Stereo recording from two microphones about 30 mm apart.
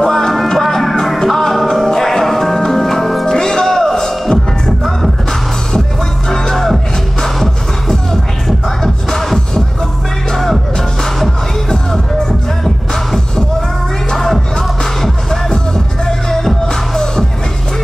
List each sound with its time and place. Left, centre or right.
0.0 s music: centre
3.3 s music: centre
6.2 s music: centre
11.7 s music: centre
16.1 s music: centre